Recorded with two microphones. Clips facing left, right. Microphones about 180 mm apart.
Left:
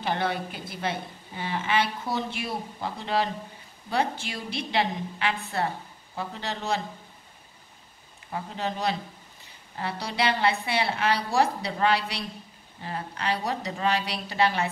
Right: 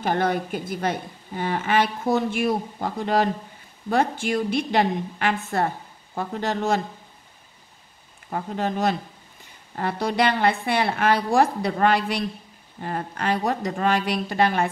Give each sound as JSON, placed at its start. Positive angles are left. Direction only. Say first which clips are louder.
{"t": 0.0, "sound": "a woman's voice", "louder": "right 5 dB", "side_deg": -45}
{"t": 8.3, "sound": "a woman's voice", "louder": "right 5 dB", "side_deg": -50}